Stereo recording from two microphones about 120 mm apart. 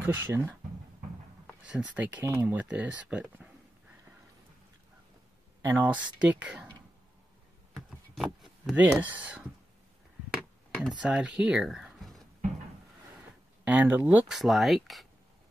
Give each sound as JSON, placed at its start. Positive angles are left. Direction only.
{"t": 0.0, "sound": "speech", "side_deg": -20}
{"t": 1.7, "sound": "speech", "side_deg": -10}
{"t": 2.6, "sound": "speech", "side_deg": -10}
{"t": 5.6, "sound": "speech", "side_deg": -20}
{"t": 7.7, "sound": "a sound", "side_deg": 0}
{"t": 8.7, "sound": "speech", "side_deg": -10}
{"t": 10.9, "sound": "speech", "side_deg": -5}
{"t": 13.7, "sound": "speech", "side_deg": -15}